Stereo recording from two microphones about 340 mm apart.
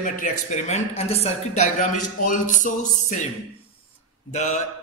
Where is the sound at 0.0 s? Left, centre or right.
Left.